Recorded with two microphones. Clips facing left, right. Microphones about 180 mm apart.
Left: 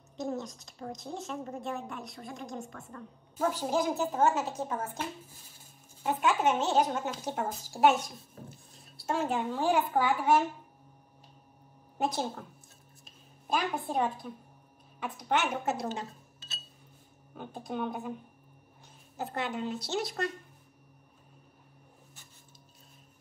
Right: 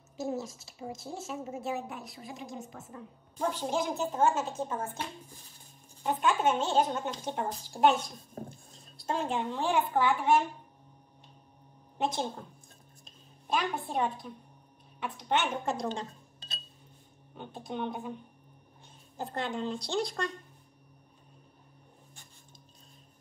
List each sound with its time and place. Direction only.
0.2 s a woman's voice: centre (ahead or behind)
8.4 s dishes: 40° right (ahead or behind)
9.0 s a woman's voice: 5° left (ahead or behind)
12.0 s a woman's voice: 5° left (ahead or behind)
13.5 s a woman's voice: centre (ahead or behind)
17.4 s a woman's voice: 5° left (ahead or behind)
19.2 s a woman's voice: 5° left (ahead or behind)